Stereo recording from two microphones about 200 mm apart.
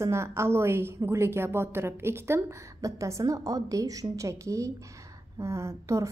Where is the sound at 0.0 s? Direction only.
15° right (ahead or behind).